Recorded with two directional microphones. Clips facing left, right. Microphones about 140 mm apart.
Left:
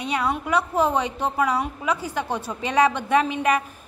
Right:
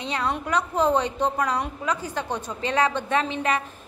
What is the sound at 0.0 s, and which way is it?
A woman's voice, 10° left (ahead or behind).